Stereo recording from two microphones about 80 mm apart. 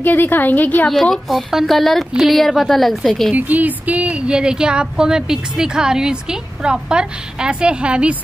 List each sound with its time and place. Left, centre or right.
0.0 s a woman's voice: left
1.1 s speech: centre
3.3 s speech: right